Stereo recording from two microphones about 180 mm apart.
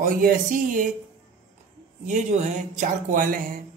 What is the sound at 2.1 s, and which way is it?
Speech, 40° right (ahead or behind).